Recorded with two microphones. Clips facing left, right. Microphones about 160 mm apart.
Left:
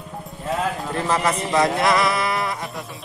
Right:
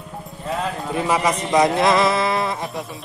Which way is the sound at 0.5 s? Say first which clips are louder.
Even; centre (ahead or behind).